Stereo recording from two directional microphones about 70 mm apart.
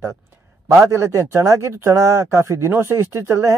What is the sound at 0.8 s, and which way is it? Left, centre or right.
Speech, right.